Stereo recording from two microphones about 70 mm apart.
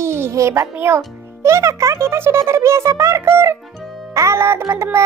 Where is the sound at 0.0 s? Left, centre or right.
Right.